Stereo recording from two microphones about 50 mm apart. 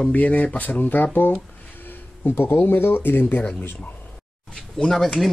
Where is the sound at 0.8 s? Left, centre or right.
Left.